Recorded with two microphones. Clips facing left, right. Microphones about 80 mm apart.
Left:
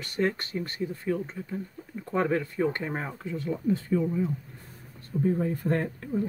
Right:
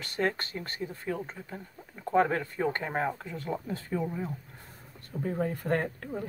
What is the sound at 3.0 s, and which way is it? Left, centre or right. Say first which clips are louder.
Speech: right 2 dB; right.